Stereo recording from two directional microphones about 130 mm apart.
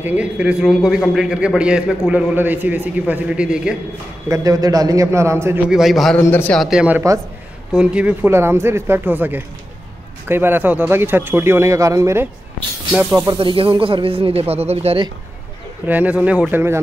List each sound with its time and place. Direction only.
0.0 s a man's voice: 10° right (ahead or behind)
4.3 s a man's voice: 30° right (ahead or behind)
5.7 s a man's voice: centre (ahead or behind)
6.2 s a man's voice: 15° left (ahead or behind)
6.5 s a man's voice: 5° right (ahead or behind); by 13.4 s 25° right (ahead or behind)
13.4 s speech: 40° right (ahead or behind)
15.9 s a man's voice: 10° right (ahead or behind)